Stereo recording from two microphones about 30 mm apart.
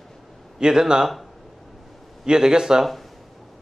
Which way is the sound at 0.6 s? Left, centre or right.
Right.